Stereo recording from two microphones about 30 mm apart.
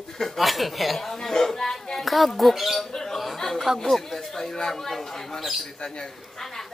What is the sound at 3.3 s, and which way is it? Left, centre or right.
Chuckle, centre.